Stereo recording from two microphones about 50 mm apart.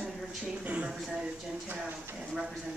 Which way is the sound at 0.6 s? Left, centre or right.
Right.